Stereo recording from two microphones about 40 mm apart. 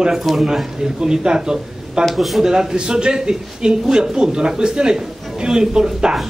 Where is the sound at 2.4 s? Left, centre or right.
Centre.